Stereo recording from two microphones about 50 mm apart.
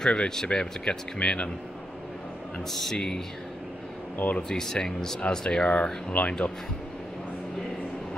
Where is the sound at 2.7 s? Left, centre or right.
Centre.